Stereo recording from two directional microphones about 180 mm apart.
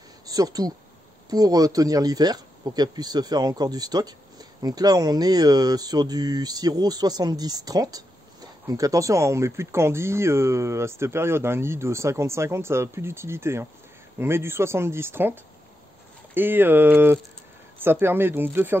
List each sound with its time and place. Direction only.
0.3 s speech: 20° right (ahead or behind)
16.3 s speech: 10° right (ahead or behind)